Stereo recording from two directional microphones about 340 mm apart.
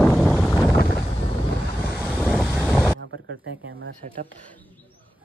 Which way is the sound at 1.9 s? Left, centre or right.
Centre.